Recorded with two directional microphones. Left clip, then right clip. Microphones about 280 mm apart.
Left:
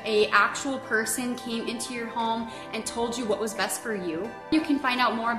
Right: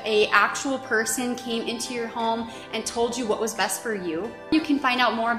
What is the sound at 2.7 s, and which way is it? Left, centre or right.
Speech, centre.